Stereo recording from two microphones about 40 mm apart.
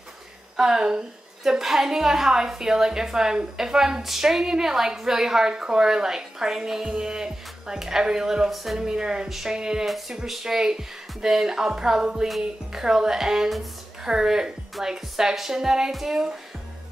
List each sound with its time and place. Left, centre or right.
0.6 s a woman's voice: centre
5.5 s a woman's voice: right
9.8 s a woman's voice: centre